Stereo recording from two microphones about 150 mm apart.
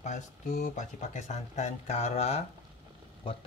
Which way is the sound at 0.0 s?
55° left (ahead or behind).